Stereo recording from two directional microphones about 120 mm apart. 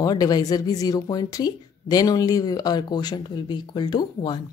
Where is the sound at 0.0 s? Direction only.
35° left (ahead or behind).